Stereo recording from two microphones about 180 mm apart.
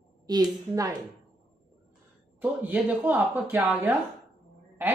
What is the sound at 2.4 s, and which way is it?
Speech, 10° right (ahead or behind).